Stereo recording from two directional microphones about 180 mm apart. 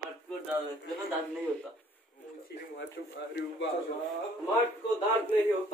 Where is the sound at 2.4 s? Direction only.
70° left (ahead or behind).